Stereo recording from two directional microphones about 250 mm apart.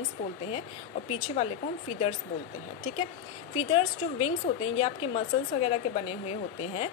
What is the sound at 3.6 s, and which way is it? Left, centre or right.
A woman's voice, left.